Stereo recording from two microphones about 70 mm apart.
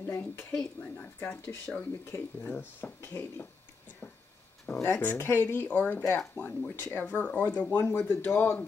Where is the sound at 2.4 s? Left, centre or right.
Left.